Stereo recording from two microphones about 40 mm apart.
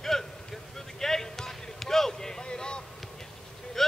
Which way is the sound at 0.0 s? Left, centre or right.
Centre.